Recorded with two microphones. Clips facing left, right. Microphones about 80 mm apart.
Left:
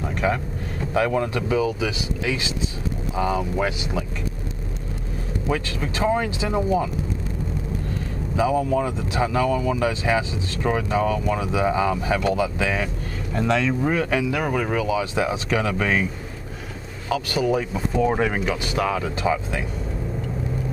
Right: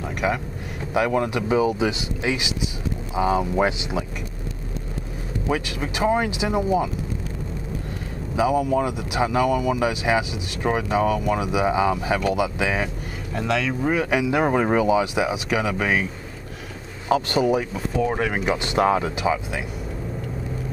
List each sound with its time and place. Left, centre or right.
0.2 s speech: centre
5.5 s speech: centre
8.4 s speech: centre
13.3 s speech: centre
17.1 s speech: right
17.7 s speech: centre
18.4 s speech: right